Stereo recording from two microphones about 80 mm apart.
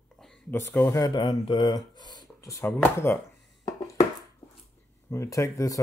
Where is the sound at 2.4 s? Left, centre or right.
Left.